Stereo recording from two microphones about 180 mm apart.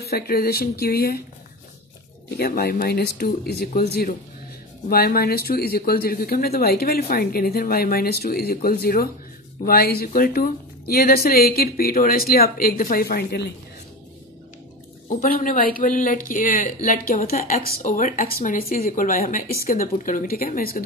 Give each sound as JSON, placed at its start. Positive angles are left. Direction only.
{"t": 0.0, "sound": "speech", "side_deg": 60}
{"t": 2.3, "sound": "speech", "side_deg": 60}
{"t": 15.0, "sound": "speech", "side_deg": 55}